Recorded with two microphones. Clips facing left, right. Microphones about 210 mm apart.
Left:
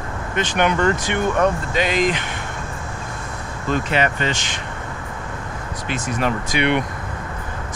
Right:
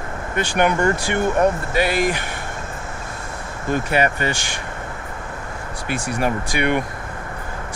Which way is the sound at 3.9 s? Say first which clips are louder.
Right 2 dB; 45° right (ahead or behind).